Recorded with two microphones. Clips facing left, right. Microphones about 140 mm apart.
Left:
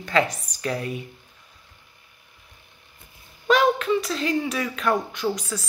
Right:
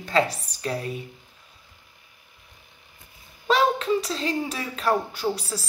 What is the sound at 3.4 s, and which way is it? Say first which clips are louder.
A woman's voice: left 2 dB; 30° right (ahead or behind).